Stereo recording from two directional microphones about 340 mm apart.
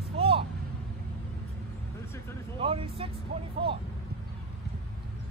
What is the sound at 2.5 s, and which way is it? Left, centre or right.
Speech, centre.